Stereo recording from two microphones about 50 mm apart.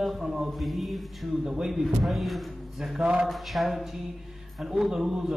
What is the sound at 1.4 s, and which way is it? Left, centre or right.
Speech, centre.